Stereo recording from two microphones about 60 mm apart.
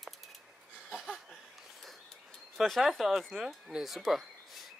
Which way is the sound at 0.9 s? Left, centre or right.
Centre.